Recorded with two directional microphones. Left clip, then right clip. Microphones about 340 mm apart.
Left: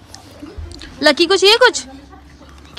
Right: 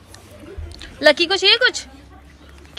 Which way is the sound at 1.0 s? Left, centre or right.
Centre.